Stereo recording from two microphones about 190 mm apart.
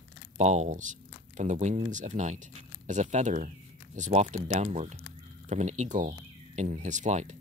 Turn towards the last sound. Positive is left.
turn(degrees=-40)  # may be behind; listen again after turning